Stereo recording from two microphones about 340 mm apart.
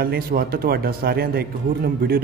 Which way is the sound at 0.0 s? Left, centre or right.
Right.